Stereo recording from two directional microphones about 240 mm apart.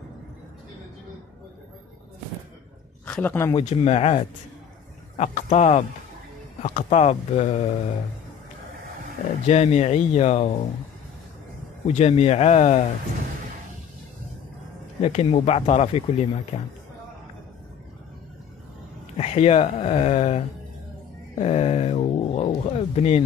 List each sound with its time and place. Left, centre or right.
3.1 s a man's voice: centre
3.5 s speech: left
9.5 s speech: left
11.9 s speech: left
15.0 s speech: left
19.1 s speech: left